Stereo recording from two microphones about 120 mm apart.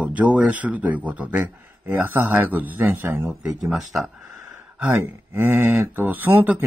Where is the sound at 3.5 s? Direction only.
Centre (ahead or behind).